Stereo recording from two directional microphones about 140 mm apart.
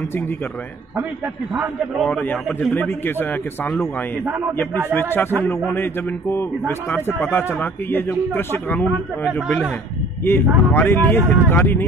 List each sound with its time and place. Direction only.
1.5 s a man's voice: 5° right (ahead or behind)
2.0 s speech: 15° left (ahead or behind)
2.3 s a man's voice: centre (ahead or behind)
2.9 s speech: 15° left (ahead or behind)
4.9 s speech: 15° left (ahead or behind)
9.2 s a man's voice: centre (ahead or behind)
10.2 s speech: 20° left (ahead or behind)